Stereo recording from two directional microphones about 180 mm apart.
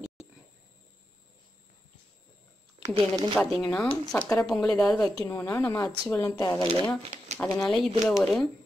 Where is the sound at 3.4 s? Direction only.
Centre (ahead or behind).